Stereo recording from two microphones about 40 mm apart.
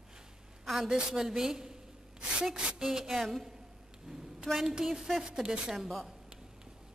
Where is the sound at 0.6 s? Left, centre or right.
Centre.